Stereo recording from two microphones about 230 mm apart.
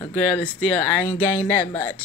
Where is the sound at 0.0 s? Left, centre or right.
Centre.